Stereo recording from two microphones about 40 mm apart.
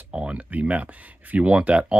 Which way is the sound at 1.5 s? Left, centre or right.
Right.